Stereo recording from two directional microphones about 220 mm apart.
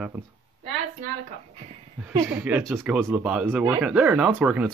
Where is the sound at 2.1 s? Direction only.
15° right (ahead or behind).